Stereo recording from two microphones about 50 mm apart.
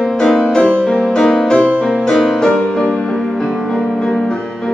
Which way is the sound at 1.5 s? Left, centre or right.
Left.